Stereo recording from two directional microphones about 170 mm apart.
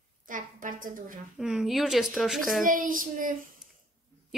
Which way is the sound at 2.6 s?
50° right (ahead or behind).